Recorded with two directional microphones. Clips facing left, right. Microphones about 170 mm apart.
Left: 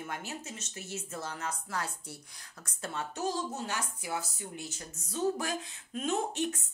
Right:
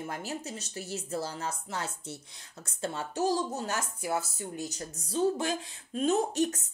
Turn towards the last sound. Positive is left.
turn(degrees=-40)  # may be behind; listen again after turning